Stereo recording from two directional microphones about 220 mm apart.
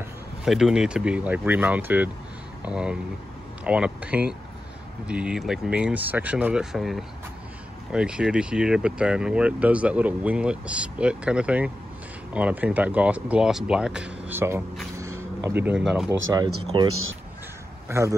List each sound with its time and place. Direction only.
0.5 s speech: centre (ahead or behind)
15.0 s a sound: 10° right (ahead or behind)
16.3 s speech: 15° right (ahead or behind)
16.8 s speech: 75° right (ahead or behind)
17.8 s speech: 15° right (ahead or behind)